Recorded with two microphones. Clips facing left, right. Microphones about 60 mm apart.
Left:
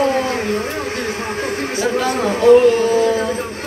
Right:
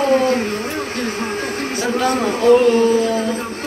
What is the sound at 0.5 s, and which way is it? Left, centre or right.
Speech, left.